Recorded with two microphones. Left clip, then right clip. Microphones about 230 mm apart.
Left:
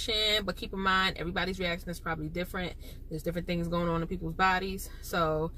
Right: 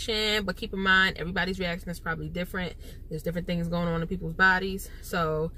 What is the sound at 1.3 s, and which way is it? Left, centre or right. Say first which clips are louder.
Speech: right 2 dB; centre.